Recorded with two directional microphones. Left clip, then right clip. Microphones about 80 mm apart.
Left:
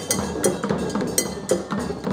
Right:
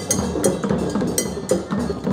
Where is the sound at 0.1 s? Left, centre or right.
Centre.